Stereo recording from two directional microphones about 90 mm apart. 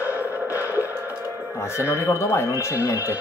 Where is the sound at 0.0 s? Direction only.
20° right (ahead or behind).